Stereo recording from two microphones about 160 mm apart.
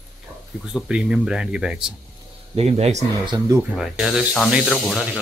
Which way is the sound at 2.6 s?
40° right (ahead or behind).